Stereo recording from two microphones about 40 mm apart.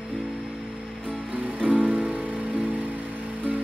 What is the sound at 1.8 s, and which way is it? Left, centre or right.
Music, right.